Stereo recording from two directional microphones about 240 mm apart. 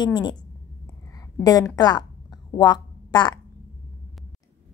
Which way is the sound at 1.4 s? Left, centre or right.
Centre.